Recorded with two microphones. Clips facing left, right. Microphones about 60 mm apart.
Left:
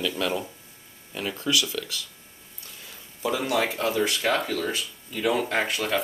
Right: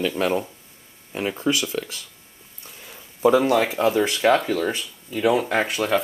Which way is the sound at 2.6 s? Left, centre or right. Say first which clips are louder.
Right 3 dB; right.